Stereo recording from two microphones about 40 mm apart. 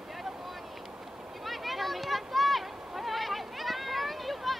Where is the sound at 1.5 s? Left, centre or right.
Centre.